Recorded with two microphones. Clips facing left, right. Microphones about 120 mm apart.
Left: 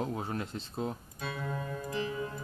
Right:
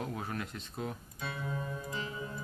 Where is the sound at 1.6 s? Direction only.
45° left (ahead or behind).